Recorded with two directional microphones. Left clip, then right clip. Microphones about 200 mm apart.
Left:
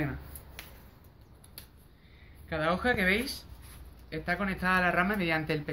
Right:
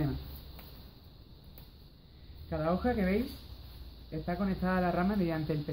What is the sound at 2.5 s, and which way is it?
Speech, 5° left (ahead or behind).